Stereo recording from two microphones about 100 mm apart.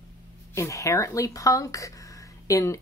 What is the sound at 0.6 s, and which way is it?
Speech, 30° left (ahead or behind).